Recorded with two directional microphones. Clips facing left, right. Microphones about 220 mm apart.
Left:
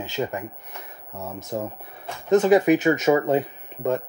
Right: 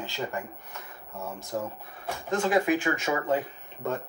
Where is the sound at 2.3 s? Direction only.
20° left (ahead or behind).